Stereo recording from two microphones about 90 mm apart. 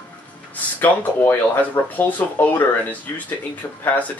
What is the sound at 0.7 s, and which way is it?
Speech, 20° left (ahead or behind).